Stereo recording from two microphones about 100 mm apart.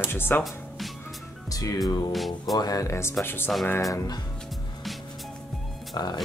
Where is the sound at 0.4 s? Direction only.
Centre (ahead or behind).